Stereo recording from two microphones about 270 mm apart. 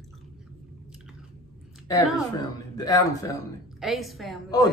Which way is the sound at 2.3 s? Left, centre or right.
Centre.